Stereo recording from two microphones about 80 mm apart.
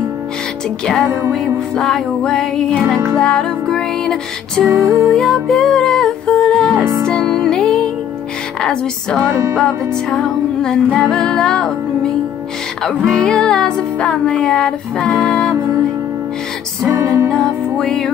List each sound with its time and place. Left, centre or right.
0.8 s music: centre
4.6 s music: right
5.0 s music: centre
16.9 s music: right
17.3 s music: centre